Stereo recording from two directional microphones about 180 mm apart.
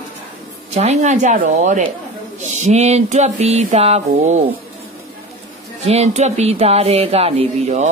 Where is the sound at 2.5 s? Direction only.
40° right (ahead or behind).